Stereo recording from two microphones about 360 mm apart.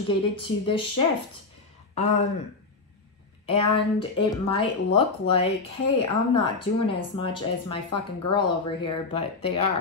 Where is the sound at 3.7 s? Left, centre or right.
Centre.